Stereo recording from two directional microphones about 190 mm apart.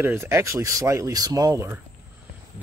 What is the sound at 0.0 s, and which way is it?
Speech, 10° right (ahead or behind).